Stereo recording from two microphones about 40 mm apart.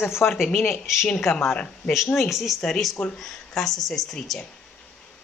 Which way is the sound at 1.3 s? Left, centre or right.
Left.